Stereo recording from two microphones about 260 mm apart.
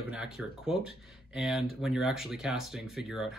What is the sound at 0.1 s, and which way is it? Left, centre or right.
Speech, centre.